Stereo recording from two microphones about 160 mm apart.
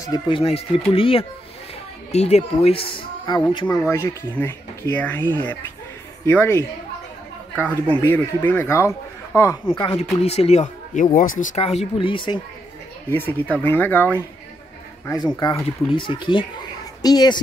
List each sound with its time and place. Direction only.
0.0 s speech: 30° left (ahead or behind)
3.9 s speech: 15° left (ahead or behind)
9.7 s speech: 30° left (ahead or behind); by 11.6 s 55° left (ahead or behind)
11.6 s speech: 40° left (ahead or behind)
13.1 s speech: 10° left (ahead or behind)
15.0 s speech: 25° left (ahead or behind)